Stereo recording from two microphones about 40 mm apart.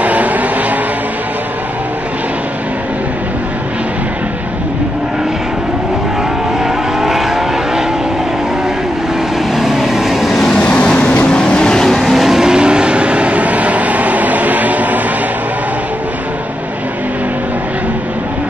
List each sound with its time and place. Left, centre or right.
0.0 s vehicle: right
6.6 s vehicle: centre
9.6 s vehicle: centre
10.3 s vehicle: centre
10.6 s vehicle: left
11.8 s vehicle: centre
12.4 s vehicle: right